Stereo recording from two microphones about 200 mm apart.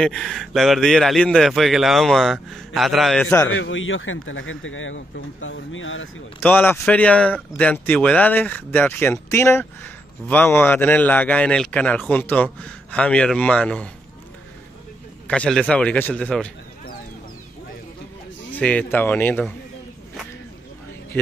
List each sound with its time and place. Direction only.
0.0 s a man's voice: 5° left (ahead or behind)
3.5 s speech: 75° left (ahead or behind)
6.4 s a man's voice: 10° left (ahead or behind)
15.2 s a man's voice: 5° left (ahead or behind)
18.6 s speech: 5° left (ahead or behind)